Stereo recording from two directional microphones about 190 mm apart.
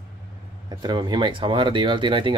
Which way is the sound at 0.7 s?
25° right (ahead or behind).